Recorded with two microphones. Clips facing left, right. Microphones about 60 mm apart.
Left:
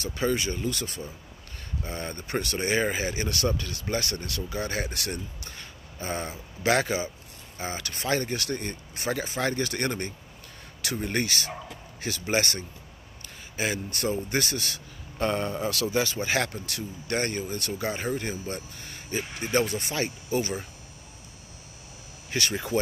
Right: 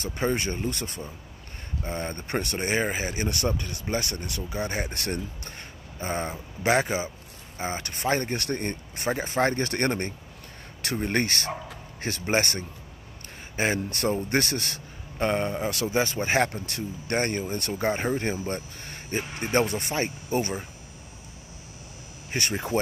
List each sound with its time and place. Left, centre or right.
0.0 s speech: right
4.8 s a man's voice: right
15.1 s speech: right
22.3 s speech: right